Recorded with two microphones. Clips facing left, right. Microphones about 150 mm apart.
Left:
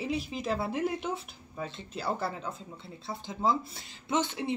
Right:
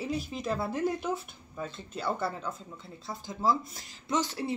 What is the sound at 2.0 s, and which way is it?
Speech, 30° left (ahead or behind).